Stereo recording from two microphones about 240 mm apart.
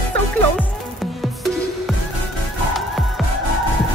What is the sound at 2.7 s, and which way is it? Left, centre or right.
Music, centre.